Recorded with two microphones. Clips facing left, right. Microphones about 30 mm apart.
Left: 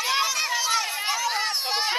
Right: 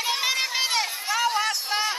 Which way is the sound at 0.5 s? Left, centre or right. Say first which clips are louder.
Even; right.